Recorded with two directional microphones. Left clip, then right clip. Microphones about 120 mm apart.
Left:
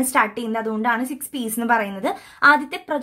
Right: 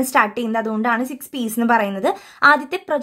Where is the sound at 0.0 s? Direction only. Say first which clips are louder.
Right 2 dB; 40° right (ahead or behind).